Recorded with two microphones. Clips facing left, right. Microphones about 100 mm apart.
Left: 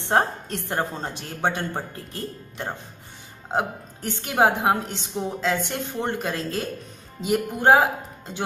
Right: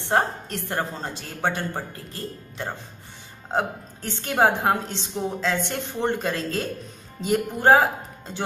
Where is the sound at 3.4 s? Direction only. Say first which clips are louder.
Even; 10° left (ahead or behind).